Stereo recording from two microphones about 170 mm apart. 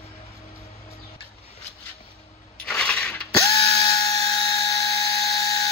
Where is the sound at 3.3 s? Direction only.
20° left (ahead or behind).